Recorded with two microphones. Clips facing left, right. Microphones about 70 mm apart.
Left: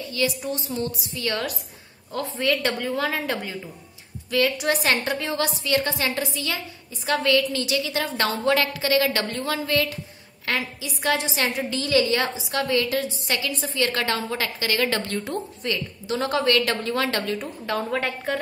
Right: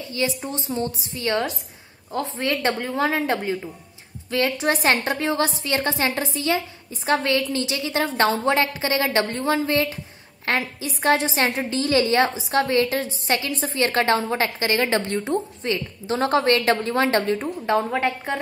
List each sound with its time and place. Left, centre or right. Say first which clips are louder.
0.0 s a woman's voice: even; right